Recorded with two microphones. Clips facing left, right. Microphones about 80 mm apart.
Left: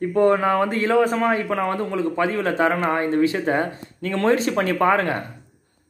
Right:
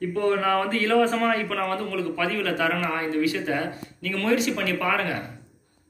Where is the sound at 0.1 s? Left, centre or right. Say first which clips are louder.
Left 5 dB; left.